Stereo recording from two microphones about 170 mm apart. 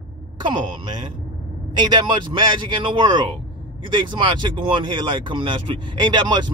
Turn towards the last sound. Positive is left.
turn(degrees=-25)  # may be behind; listen again after turning